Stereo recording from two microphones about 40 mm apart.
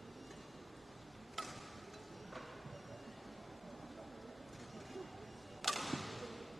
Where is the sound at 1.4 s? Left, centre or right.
Centre.